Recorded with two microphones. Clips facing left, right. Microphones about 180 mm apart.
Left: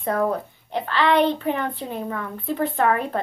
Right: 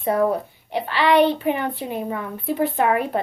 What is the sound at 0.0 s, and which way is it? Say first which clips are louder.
A child's voice: right 3 dB; 15° right (ahead or behind).